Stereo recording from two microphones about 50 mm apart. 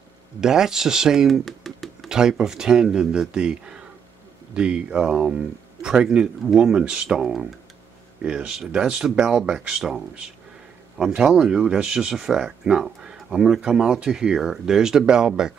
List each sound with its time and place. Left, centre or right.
0.4 s speech: centre
1.2 s a sound: centre
2.0 s speech: centre
8.2 s speech: right
9.8 s speech: centre